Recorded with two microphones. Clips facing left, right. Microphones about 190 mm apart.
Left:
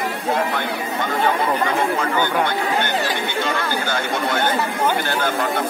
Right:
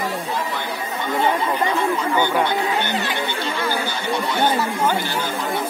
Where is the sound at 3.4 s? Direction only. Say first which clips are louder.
Left 1 dB; 50° left (ahead or behind).